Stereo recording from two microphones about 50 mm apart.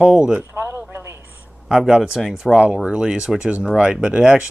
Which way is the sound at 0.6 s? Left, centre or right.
Right.